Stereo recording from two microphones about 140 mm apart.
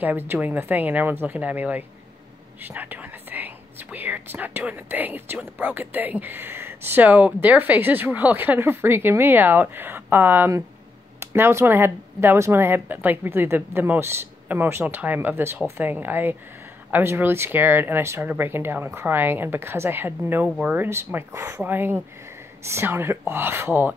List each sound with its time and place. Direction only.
0.0 s speech: 15° right (ahead or behind)